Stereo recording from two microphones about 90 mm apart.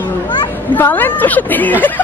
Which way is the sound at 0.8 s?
20° left (ahead or behind).